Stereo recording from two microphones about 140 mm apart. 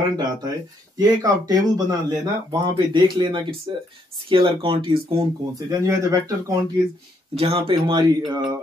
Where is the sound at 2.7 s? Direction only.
30° right (ahead or behind).